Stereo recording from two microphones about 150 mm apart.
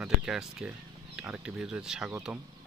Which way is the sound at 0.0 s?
5° right (ahead or behind).